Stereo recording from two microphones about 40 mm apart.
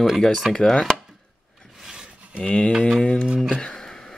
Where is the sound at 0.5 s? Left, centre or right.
Centre.